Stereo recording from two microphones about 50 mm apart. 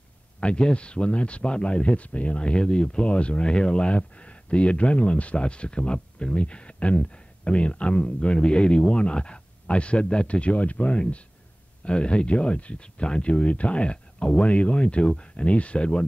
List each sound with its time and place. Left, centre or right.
0.4 s speech: centre